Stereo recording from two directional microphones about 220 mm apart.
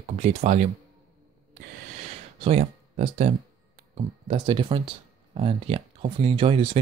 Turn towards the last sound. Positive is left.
turn(degrees=-25)  # may be behind; listen again after turning